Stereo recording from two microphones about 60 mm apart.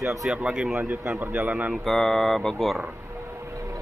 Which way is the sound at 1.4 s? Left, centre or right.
Right.